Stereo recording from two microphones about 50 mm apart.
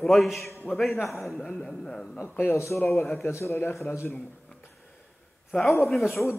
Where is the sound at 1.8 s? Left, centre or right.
Centre.